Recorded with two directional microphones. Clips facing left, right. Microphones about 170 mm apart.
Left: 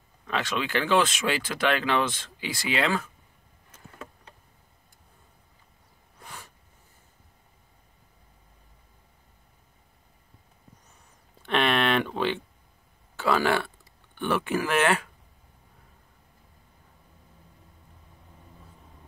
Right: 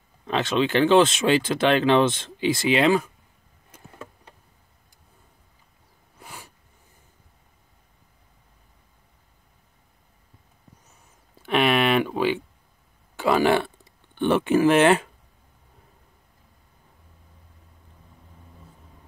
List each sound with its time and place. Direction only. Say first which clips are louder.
0.3 s speech: right 6 dB; 25° right (ahead or behind)
3.7 s insect: right 2 dB; 15° right (ahead or behind)
6.1 s a sound: right 2 dB; 10° right (ahead or behind)
11.4 s a sound: right 4 dB; 5° right (ahead or behind)
13.1 s burping: right 4 dB; 15° right (ahead or behind)
14.1 s speech: right 7 dB; 25° right (ahead or behind)